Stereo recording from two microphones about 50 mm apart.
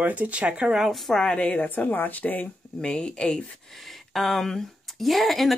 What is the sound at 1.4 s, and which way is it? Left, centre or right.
A woman's voice, left.